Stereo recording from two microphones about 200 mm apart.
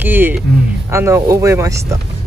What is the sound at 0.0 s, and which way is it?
Speech, 10° right (ahead or behind).